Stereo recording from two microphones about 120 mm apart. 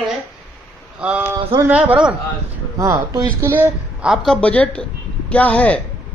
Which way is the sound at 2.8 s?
30° right (ahead or behind).